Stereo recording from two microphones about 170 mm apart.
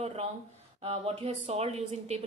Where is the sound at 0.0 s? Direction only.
35° right (ahead or behind).